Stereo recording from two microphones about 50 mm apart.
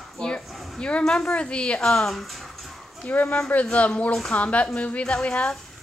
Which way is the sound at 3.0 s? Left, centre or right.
Left.